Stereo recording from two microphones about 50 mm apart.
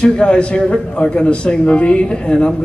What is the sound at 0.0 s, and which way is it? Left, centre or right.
A man's voice, centre.